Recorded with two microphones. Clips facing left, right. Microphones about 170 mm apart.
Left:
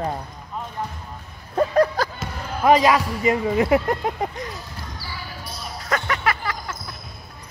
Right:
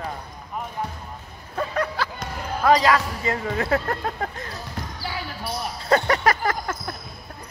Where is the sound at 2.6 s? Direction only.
15° left (ahead or behind).